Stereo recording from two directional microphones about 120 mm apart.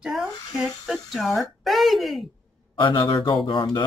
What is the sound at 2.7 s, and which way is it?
Speech, 45° left (ahead or behind).